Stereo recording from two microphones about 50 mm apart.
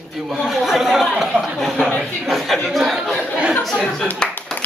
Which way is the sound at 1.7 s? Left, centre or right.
Centre.